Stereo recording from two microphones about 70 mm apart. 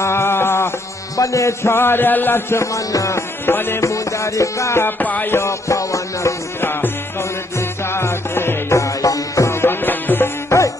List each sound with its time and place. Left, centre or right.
0.0 s a sound: left
1.1 s a man's voice: left
2.5 s music: left
3.4 s a man's voice: left
3.8 s music: left
4.8 s music: left
5.3 s music: left
6.6 s music: left
9.6 s music: left